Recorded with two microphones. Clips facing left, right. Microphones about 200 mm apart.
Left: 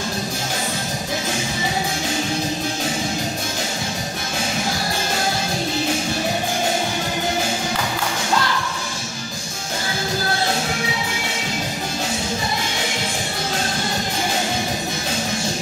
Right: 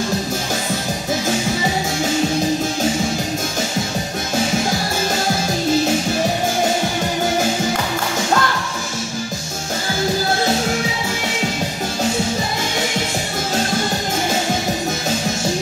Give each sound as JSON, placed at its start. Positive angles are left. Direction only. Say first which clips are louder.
{"t": 8.4, "sound": "music", "louder": "right 1 dB", "side_deg": -50}